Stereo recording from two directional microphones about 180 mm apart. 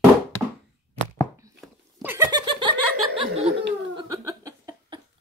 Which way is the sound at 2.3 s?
25° right (ahead or behind).